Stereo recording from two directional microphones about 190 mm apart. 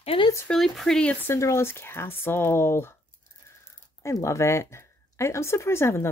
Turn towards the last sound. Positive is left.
turn(degrees=15)  # may be behind; listen again after turning